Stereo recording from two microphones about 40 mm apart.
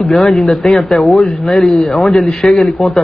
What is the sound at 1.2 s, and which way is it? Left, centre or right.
Speech, centre.